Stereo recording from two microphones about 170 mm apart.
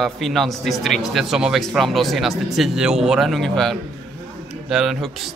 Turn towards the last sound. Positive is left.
turn(degrees=0)  # may be behind; listen again after turning